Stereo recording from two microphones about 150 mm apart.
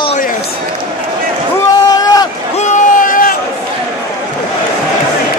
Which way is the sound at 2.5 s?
55° left (ahead or behind).